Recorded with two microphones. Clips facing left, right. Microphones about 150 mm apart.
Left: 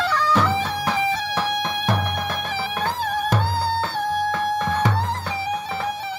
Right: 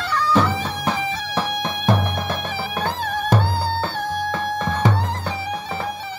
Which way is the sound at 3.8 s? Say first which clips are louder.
Left 1 dB; 25° right (ahead or behind).